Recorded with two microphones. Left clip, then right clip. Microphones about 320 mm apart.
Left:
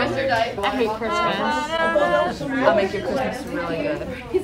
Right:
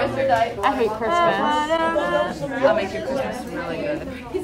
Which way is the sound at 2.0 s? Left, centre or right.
Centre.